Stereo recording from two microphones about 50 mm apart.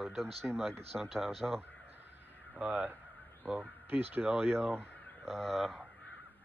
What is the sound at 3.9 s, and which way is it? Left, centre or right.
Speech, right.